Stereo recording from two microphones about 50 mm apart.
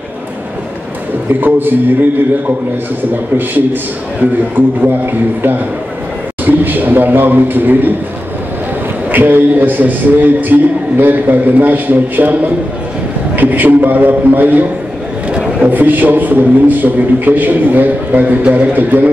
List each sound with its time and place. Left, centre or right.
1.4 s a man's voice: right
4.8 s a man's voice: right
9.1 s a man's voice: right
13.4 s a man's voice: right